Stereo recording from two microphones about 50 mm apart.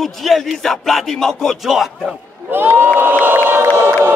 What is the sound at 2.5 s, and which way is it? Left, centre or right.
Crowd, right.